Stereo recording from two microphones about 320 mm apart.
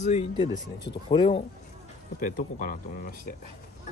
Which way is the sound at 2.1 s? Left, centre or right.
Left.